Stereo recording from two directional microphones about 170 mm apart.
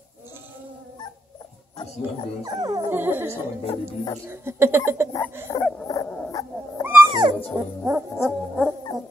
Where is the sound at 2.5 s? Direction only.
25° right (ahead or behind).